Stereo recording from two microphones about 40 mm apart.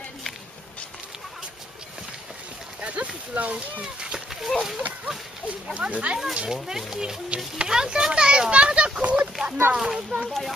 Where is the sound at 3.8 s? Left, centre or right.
Centre.